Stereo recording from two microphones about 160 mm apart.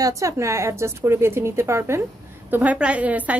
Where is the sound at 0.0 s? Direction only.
20° right (ahead or behind).